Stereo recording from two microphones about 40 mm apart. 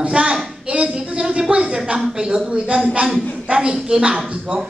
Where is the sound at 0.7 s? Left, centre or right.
Right.